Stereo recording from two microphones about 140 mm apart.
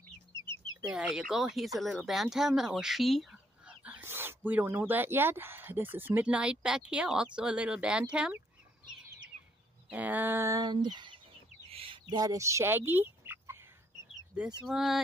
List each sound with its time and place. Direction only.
0.3 s chicken: 30° right (ahead or behind)
0.9 s speech: 5° right (ahead or behind)
9.8 s speech: 10° right (ahead or behind); by 11.1 s 35° right (ahead or behind)
11.7 s bird: 40° right (ahead or behind)
12.1 s speech: 25° right (ahead or behind)
14.6 s speech: 5° right (ahead or behind)